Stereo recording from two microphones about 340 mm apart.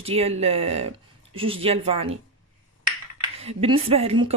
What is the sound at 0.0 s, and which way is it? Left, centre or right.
Speech, centre.